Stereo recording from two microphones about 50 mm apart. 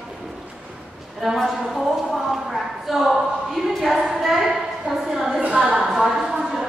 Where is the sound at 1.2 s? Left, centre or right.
Centre.